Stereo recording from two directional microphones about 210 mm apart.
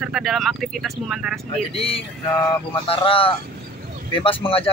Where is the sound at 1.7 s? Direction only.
25° left (ahead or behind).